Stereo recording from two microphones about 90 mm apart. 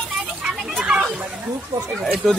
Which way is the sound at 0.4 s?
10° right (ahead or behind).